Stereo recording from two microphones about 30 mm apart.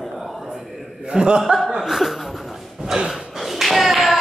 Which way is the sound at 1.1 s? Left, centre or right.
Right.